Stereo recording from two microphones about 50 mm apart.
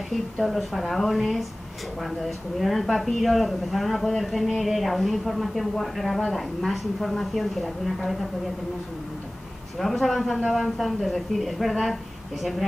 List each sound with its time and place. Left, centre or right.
0.4 s speech: centre
9.8 s speech: centre